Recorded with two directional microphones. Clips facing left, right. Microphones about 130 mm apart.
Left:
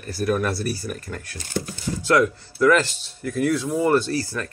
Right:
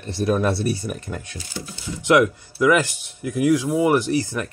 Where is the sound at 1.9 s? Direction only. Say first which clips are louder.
Right 2 dB; 20° right (ahead or behind).